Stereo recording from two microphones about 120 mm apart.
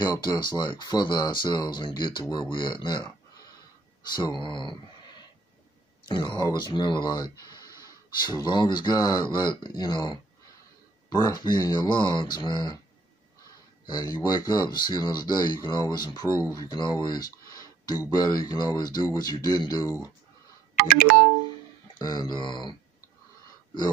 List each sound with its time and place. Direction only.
0.0 s speech: 40° left (ahead or behind)
4.2 s speech: 40° left (ahead or behind)
13.8 s speech: 35° left (ahead or behind)
21.9 s speech: 30° left (ahead or behind)